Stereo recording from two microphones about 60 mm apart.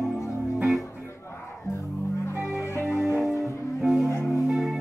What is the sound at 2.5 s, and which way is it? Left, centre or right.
Music, left.